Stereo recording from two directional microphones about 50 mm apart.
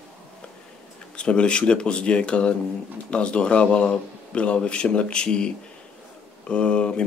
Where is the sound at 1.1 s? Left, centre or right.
Centre.